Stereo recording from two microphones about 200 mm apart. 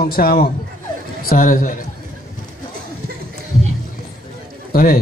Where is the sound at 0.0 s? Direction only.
50° left (ahead or behind).